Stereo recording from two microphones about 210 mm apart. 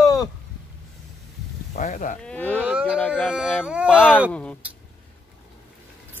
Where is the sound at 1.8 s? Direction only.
40° left (ahead or behind).